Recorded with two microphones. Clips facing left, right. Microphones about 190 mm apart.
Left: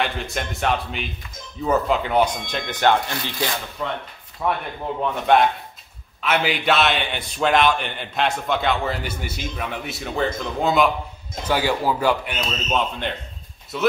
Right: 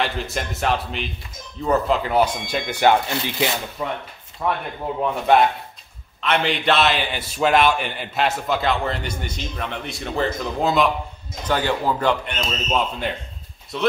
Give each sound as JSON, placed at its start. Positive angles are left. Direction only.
{"t": 0.0, "sound": "a man's voice", "side_deg": 0}
{"t": 3.1, "sound": "rub", "side_deg": -20}
{"t": 4.4, "sound": "a man's voice", "side_deg": 0}